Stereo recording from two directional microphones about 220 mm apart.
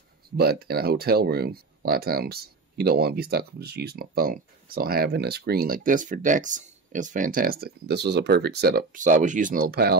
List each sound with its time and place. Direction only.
0.4 s speech: 45° right (ahead or behind)